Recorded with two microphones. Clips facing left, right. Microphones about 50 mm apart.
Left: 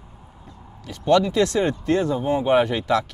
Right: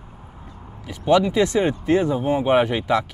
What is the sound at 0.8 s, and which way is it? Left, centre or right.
Speech, centre.